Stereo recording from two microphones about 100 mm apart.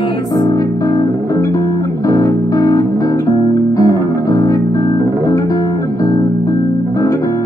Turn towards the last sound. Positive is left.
turn(degrees=35)  # may be behind; listen again after turning